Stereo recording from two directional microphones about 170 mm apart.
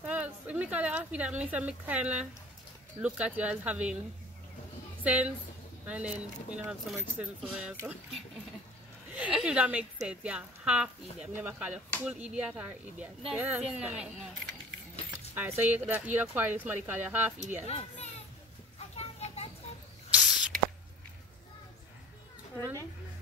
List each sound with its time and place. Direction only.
0.1 s a sound: 5° right (ahead or behind)
1.4 s speech: 10° right (ahead or behind)
5.0 s a woman's voice: 10° right (ahead or behind)
9.1 s speech: 5° right (ahead or behind)
15.3 s speech: 10° right (ahead or behind)
17.6 s a child's voice: 40° left (ahead or behind)
18.9 s a sound: 40° left (ahead or behind)
20.1 s rodents: 5° right (ahead or behind)